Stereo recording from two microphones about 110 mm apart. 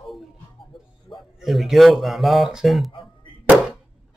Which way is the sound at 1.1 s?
45° left (ahead or behind).